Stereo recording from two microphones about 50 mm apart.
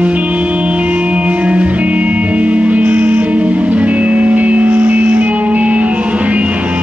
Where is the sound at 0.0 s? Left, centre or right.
Right.